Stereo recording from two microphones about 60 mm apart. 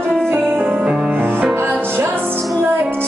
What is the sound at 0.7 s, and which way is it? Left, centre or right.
Music, centre.